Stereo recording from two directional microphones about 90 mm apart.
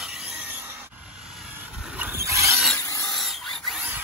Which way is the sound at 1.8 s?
15° right (ahead or behind).